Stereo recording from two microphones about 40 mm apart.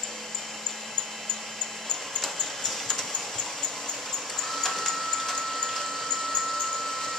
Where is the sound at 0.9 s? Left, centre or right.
Centre.